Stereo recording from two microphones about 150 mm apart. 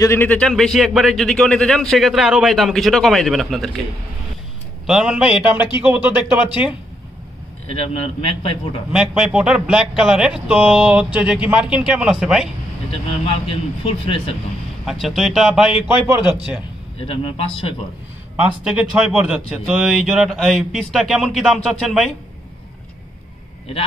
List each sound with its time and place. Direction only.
0.0 s a man's voice: 15° left (ahead or behind)
4.8 s speech: 5° right (ahead or behind)
7.8 s a man's voice: 40° left (ahead or behind)
8.9 s a man's voice: 5° right (ahead or behind)
12.9 s a man's voice: 40° left (ahead or behind)
14.9 s a man's voice: centre (ahead or behind)
17.0 s a man's voice: 40° left (ahead or behind)
18.3 s a man's voice: 10° right (ahead or behind)